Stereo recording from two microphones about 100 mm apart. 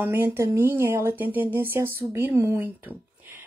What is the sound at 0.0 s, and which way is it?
Speech, 20° right (ahead or behind).